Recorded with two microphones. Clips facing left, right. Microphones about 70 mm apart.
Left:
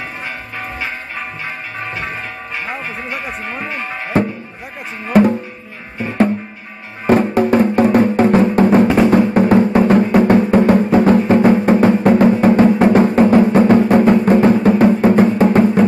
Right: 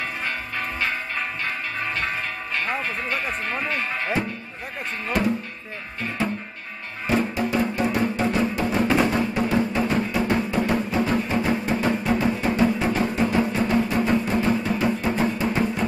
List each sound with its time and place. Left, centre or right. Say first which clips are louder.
0.6 s change ringing: left 2 dB; centre
2.6 s speech: left 1 dB; centre
7.1 s music: left 10 dB; left